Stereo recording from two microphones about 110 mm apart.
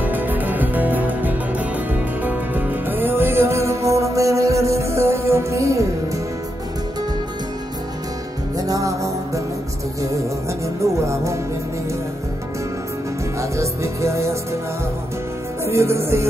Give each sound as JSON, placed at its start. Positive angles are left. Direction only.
{"t": 0.0, "sound": "music", "side_deg": -15}
{"t": 8.5, "sound": "music", "side_deg": -30}
{"t": 10.8, "sound": "music", "side_deg": -25}
{"t": 13.4, "sound": "music", "side_deg": -25}
{"t": 15.6, "sound": "music", "side_deg": -25}